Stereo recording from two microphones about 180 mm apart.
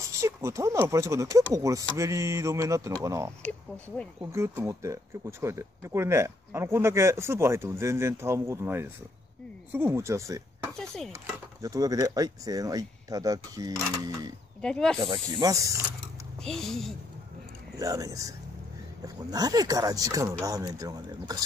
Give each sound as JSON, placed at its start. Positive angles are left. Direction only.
{"t": 0.1, "sound": "speech", "side_deg": -15}
{"t": 3.4, "sound": "speech", "side_deg": 5}
{"t": 4.2, "sound": "speech", "side_deg": -15}
{"t": 10.7, "sound": "chopping", "side_deg": 5}
{"t": 11.6, "sound": "speech", "side_deg": -20}
{"t": 14.6, "sound": "speech", "side_deg": 5}
{"t": 15.0, "sound": "speech", "side_deg": -25}
{"t": 16.4, "sound": "speech", "side_deg": 0}
{"t": 17.7, "sound": "speech", "side_deg": -20}